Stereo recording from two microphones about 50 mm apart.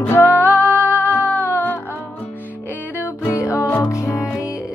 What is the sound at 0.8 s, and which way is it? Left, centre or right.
Music, left.